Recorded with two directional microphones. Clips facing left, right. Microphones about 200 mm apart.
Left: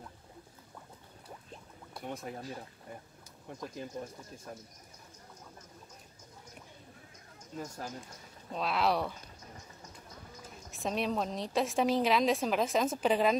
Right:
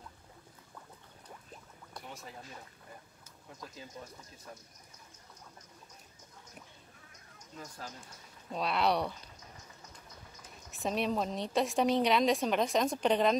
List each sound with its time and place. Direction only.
2.0 s boat: 55° left (ahead or behind)
7.5 s speech: 45° left (ahead or behind)
8.5 s a woman's voice: centre (ahead or behind)
10.7 s a woman's voice: centre (ahead or behind)